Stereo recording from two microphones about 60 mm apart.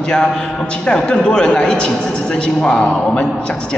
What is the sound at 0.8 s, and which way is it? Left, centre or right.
A man's voice, centre.